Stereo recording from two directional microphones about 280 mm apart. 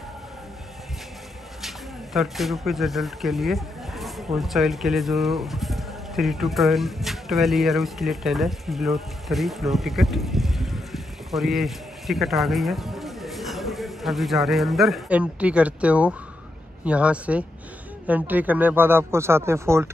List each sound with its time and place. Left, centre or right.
2.1 s speech: centre